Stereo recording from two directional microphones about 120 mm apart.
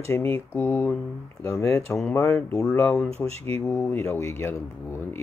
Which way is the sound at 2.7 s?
10° left (ahead or behind).